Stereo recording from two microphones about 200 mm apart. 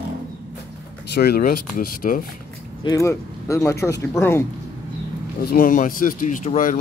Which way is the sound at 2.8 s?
15° left (ahead or behind).